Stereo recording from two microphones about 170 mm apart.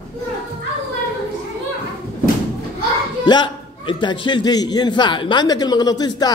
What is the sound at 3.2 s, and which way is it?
A man's voice, 30° left (ahead or behind).